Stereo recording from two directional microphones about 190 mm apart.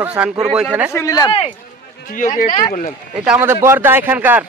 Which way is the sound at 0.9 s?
15° left (ahead or behind).